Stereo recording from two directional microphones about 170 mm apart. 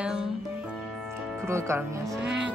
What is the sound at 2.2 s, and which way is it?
Vehicle, 5° right (ahead or behind).